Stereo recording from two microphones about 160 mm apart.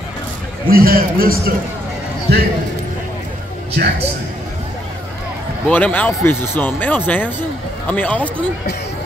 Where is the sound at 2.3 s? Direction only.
90° right.